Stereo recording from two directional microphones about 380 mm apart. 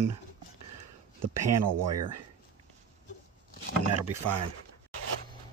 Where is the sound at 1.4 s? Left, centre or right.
Right.